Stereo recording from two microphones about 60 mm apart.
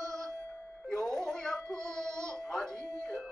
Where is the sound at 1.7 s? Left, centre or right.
Right.